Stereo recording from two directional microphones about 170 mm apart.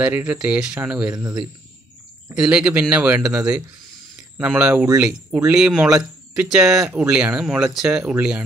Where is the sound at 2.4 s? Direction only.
5° right (ahead or behind).